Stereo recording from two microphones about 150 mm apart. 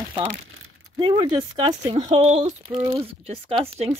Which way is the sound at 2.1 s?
45° right (ahead or behind).